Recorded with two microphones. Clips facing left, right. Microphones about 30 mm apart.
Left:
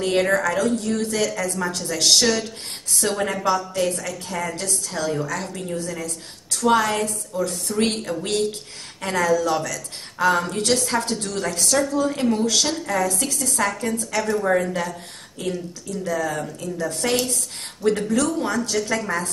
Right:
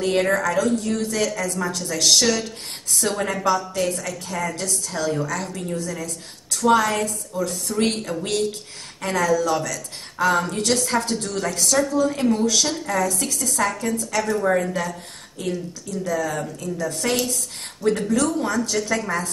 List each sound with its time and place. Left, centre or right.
0.0 s a woman's voice: centre
2.2 s a woman's voice: centre
14.3 s speech: centre
16.7 s a woman's voice: left
17.1 s a woman's voice: centre